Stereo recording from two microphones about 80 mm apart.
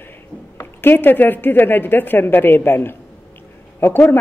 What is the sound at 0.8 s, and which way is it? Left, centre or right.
Speech, left.